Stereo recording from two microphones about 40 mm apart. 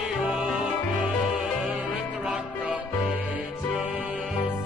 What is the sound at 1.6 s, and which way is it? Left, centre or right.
Music, right.